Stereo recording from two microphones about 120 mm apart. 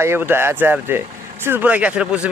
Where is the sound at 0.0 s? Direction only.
20° right (ahead or behind).